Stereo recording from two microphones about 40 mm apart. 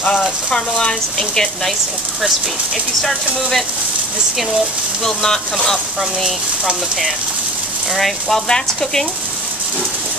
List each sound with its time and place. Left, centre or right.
0.5 s speech: left
5.0 s speech: centre
7.9 s speech: centre
8.5 s speech: centre